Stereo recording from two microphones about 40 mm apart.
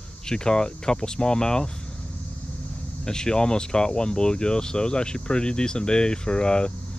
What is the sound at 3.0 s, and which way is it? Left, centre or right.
Speech, centre.